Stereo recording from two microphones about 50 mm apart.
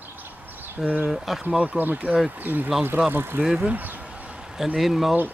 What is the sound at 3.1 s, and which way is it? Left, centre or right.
Speech, right.